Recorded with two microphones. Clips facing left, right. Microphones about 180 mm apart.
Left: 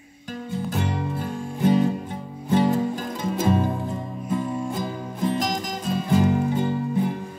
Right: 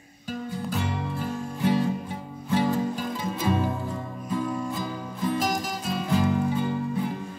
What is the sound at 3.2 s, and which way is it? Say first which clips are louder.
Music: left 6 dB; 45° left (ahead or behind).